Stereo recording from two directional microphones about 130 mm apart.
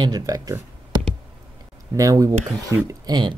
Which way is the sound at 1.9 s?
25° right (ahead or behind).